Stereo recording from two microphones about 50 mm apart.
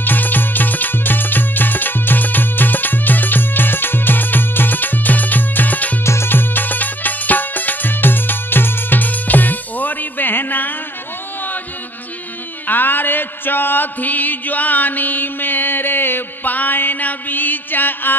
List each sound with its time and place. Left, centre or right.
0.0 s music: left
6.0 s music: left
6.3 s music: left
12.6 s music: left